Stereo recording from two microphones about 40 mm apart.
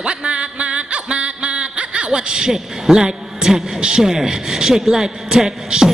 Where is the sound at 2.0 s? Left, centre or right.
Right.